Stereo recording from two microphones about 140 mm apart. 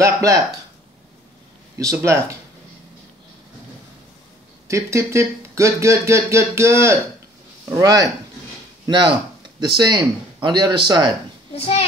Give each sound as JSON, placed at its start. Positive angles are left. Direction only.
{"t": 0.0, "sound": "speech", "side_deg": -25}
{"t": 1.8, "sound": "speech", "side_deg": -20}
{"t": 4.6, "sound": "speech", "side_deg": -20}
{"t": 11.5, "sound": "a child's voice", "side_deg": 45}